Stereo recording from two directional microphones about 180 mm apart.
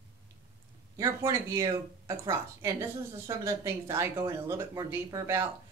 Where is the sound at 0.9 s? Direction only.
20° right (ahead or behind).